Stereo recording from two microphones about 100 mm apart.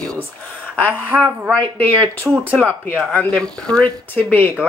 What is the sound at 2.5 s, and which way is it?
Speech, 15° left (ahead or behind).